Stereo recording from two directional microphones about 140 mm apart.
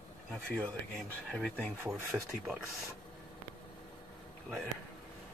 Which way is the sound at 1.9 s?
5° right (ahead or behind).